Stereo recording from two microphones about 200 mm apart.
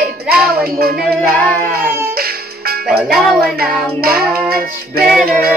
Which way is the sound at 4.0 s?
50° right (ahead or behind).